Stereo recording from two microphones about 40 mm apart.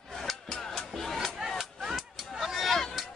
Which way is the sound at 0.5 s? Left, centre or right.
Centre.